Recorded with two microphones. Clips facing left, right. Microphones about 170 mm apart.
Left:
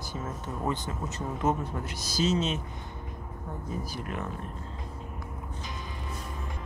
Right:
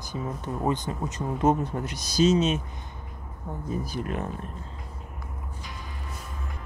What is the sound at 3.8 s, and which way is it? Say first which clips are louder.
Speech: right 5 dB; 25° right (ahead or behind).